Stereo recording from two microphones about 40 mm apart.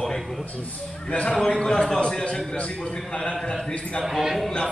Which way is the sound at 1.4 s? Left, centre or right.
Centre.